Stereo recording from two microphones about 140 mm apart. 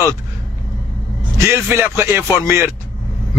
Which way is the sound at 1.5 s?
15° right (ahead or behind).